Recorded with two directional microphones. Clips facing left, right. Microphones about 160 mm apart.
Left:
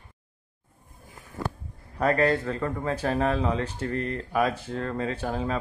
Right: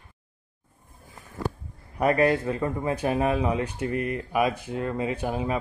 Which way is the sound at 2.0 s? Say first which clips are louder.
Right 1 dB; 15° right (ahead or behind).